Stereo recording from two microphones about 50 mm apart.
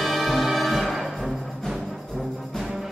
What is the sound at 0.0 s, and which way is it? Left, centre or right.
Music, centre.